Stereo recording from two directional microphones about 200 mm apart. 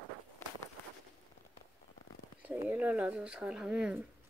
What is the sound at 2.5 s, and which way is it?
Speech, 10° right (ahead or behind).